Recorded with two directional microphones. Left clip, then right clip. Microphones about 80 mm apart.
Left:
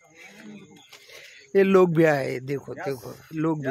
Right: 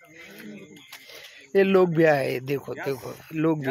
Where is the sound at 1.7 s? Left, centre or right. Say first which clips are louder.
Left 1 dB; left.